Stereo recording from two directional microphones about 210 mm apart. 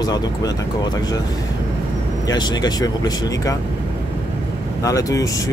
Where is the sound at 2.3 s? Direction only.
20° left (ahead or behind).